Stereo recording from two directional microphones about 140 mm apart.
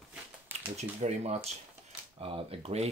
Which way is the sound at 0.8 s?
55° right (ahead or behind).